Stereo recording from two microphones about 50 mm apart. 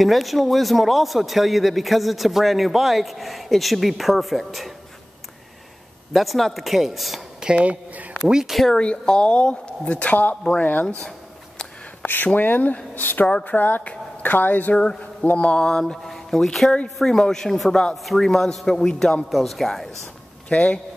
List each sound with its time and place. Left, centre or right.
0.0 s speech: centre
6.1 s speech: centre
7.3 s a woman's voice: centre
8.5 s speech: centre
8.7 s speech: centre; by 10.9 s left
11.0 s a sound: centre
12.0 s a sound: left
12.4 s speech: left
15.3 s a man's voice: left
16.0 s speech: centre
16.7 s a man's voice: centre
19.3 s speech: centre
20.4 s a man's voice: left